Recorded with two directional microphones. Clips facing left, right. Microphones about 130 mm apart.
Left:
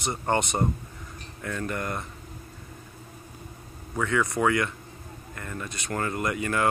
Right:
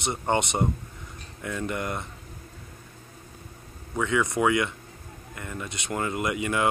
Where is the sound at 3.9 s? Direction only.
20° right (ahead or behind).